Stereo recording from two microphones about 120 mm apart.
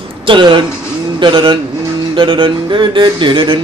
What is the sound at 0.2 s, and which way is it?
Speech, 45° right (ahead or behind).